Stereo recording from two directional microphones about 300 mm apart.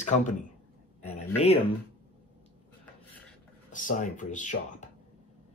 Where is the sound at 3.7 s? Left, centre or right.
Left.